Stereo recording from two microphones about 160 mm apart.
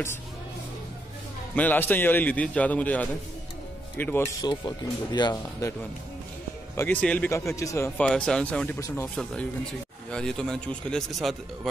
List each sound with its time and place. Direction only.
1.5 s a man's voice: 10° left (ahead or behind)
8.0 s a man's voice: 5° left (ahead or behind)
8.7 s a man's voice: 15° left (ahead or behind)
9.1 s a man's voice: 5° left (ahead or behind)